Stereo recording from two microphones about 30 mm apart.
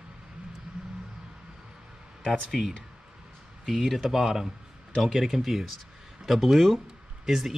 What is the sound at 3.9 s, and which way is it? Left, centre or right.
Speech, centre.